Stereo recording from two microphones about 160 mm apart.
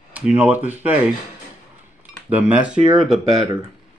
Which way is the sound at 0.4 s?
10° right (ahead or behind).